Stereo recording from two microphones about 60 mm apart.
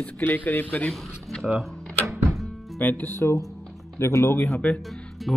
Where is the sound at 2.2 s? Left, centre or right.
Centre.